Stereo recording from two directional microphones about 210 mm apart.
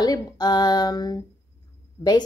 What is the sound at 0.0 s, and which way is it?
A woman's voice, 20° left (ahead or behind).